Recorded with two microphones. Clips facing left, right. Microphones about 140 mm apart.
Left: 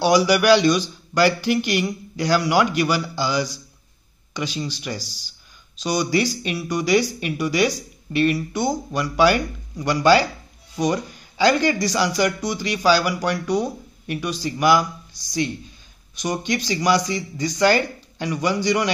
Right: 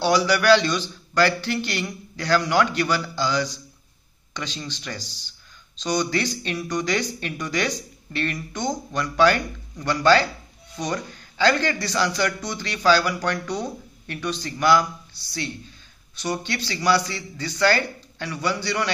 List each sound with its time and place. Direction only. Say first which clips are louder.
0.0 s a man's voice: left 3 dB; 15° left (ahead or behind)